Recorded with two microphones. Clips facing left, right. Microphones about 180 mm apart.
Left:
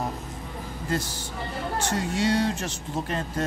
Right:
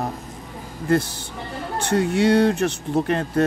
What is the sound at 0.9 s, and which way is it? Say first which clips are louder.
Speech: right 9 dB; 60° right (ahead or behind).